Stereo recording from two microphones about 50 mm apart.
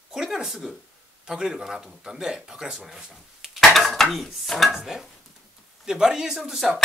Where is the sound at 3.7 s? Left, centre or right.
Centre.